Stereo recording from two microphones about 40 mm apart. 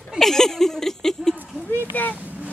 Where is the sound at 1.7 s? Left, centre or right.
Left.